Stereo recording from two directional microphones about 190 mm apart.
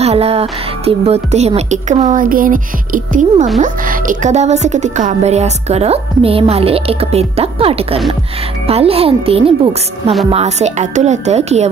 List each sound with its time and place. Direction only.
0.0 s speech: 30° right (ahead or behind)